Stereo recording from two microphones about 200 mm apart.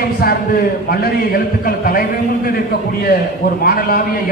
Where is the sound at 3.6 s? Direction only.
45° left (ahead or behind).